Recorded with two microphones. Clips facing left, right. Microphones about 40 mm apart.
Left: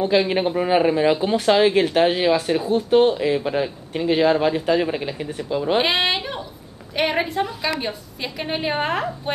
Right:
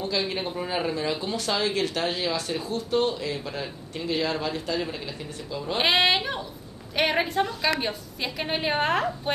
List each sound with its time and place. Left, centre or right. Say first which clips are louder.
0.0 s speech: left 9 dB; left
5.8 s a woman's voice: right 3 dB; centre